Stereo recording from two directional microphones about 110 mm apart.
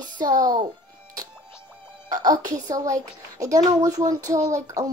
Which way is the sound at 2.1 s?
35° right (ahead or behind).